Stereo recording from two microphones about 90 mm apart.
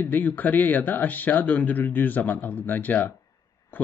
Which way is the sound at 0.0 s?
20° left (ahead or behind).